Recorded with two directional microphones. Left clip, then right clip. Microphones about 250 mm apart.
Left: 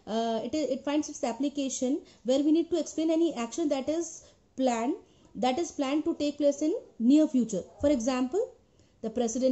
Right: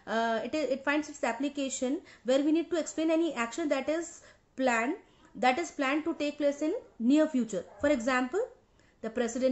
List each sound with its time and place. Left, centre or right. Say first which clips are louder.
0.0 s a woman's voice: even; centre